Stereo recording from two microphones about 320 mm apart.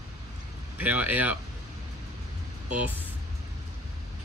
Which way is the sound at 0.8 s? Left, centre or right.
Centre.